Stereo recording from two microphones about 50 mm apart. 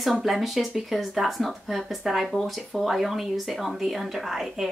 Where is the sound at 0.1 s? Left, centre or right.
Centre.